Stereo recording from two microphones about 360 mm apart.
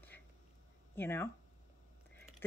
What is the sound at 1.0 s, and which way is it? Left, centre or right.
Speech, centre.